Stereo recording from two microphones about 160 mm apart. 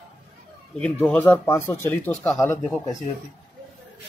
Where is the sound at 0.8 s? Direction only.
10° left (ahead or behind).